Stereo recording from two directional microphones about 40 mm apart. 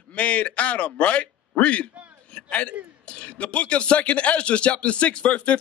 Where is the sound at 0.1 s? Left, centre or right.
Left.